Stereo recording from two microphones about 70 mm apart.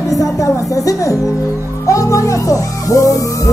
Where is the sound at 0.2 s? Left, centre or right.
Left.